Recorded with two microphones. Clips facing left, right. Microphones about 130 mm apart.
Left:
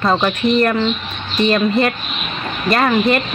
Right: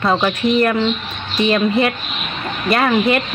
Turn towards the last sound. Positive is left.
turn(degrees=-5)  # may be behind; listen again after turning